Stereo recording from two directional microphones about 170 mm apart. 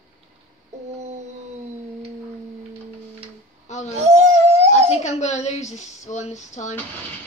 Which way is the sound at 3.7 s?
40° left (ahead or behind).